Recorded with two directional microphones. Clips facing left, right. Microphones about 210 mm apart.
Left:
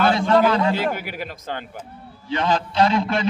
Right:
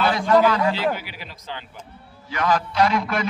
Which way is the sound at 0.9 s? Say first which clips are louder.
Left 5 dB; 50° left (ahead or behind).